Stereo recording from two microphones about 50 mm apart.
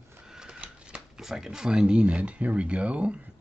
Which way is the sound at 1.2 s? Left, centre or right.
Centre.